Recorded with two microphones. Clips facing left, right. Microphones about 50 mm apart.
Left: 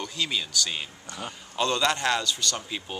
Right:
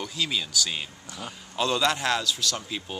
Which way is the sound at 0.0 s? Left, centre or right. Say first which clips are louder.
Even; centre.